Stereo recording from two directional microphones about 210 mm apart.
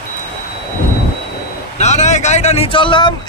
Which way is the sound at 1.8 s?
35° left (ahead or behind).